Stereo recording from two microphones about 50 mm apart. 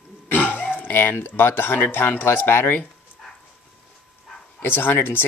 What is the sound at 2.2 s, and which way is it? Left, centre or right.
Speech, left.